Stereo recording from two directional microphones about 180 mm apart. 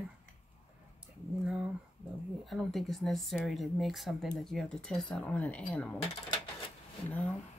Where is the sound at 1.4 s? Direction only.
5° right (ahead or behind).